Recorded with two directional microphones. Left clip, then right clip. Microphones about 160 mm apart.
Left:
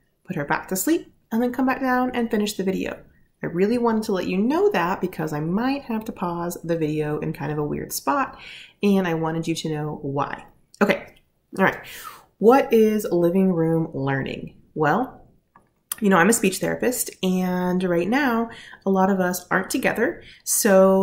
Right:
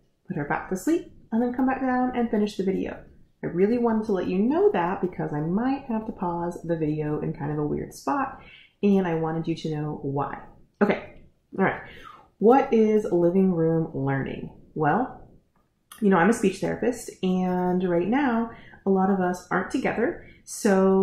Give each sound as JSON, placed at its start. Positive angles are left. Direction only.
{"t": 0.3, "sound": "speech", "side_deg": 20}
{"t": 12.4, "sound": "speech", "side_deg": 15}
{"t": 15.9, "sound": "speech", "side_deg": 15}